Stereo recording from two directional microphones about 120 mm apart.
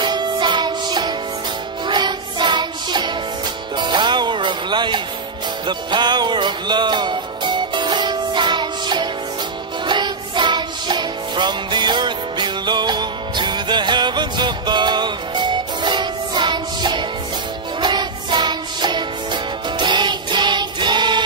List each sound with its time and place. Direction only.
0.0 s music: 40° right (ahead or behind)